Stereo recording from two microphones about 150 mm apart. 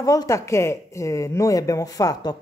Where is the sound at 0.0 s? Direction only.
25° left (ahead or behind).